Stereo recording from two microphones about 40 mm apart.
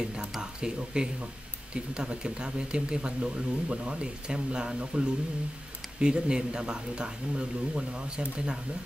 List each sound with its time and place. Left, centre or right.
0.0 s speech: right